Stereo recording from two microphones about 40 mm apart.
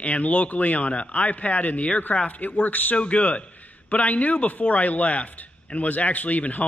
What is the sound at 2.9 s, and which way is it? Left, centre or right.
Speech, left.